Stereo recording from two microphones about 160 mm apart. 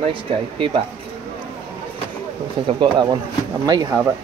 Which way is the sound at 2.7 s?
30° right (ahead or behind).